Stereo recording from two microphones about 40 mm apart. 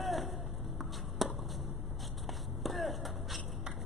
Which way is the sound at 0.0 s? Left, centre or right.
Centre.